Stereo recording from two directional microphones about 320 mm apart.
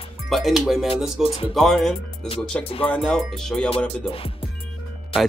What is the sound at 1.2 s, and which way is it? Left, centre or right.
Speech, centre.